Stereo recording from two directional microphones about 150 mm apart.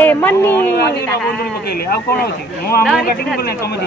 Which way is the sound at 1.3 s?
90° left.